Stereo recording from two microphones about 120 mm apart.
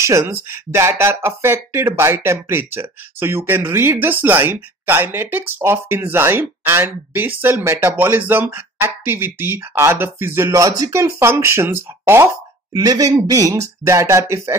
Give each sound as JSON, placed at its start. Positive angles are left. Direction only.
{"t": 0.0, "sound": "speech", "side_deg": -20}
{"t": 12.7, "sound": "speech", "side_deg": -30}